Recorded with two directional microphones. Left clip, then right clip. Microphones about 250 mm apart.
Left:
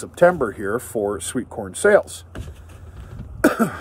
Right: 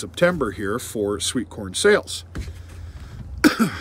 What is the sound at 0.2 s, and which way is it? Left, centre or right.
Speech, centre.